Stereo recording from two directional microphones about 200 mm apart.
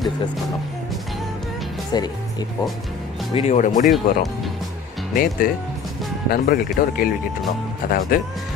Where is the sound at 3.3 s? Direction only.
30° left (ahead or behind).